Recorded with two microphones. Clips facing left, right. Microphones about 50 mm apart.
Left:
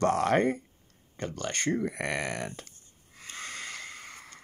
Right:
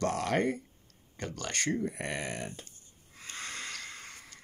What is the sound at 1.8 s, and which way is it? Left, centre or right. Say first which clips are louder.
Speech: left 4 dB; left.